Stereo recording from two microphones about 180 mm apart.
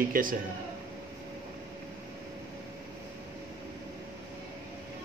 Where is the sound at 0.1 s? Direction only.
50° right (ahead or behind).